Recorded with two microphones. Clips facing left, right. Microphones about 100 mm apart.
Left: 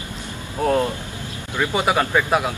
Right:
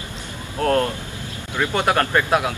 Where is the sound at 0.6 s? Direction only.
5° left (ahead or behind).